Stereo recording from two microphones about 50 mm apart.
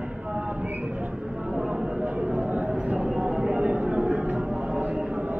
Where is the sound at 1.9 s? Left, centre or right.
Right.